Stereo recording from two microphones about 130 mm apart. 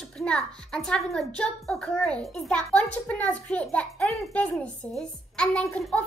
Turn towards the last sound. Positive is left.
turn(degrees=5)  # may be behind; listen again after turning